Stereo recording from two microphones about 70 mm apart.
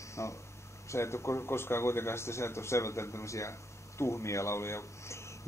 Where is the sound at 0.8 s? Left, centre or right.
Left.